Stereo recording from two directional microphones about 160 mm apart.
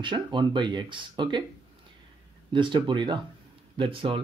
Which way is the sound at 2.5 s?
30° right (ahead or behind).